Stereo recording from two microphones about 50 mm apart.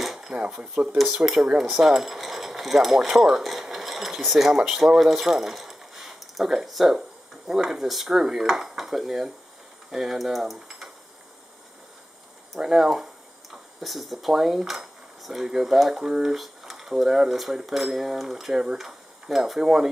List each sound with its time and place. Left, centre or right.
0.0 s dishes: centre
0.3 s speech: centre
1.2 s speech: centre
12.5 s speech: centre